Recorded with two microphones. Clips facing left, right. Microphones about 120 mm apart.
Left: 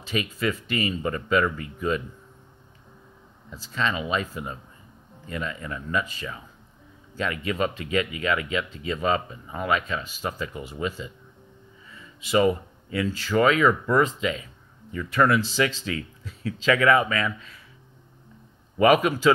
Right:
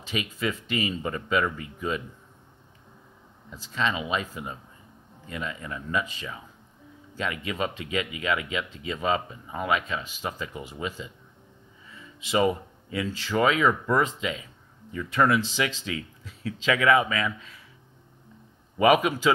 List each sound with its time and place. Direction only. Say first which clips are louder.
0.0 s speech: left 3 dB; 15° right (ahead or behind)
3.5 s speech: left 1 dB; 15° right (ahead or behind)
12.2 s speech: left 3 dB; 20° right (ahead or behind)
18.8 s speech: left 2 dB; 15° right (ahead or behind)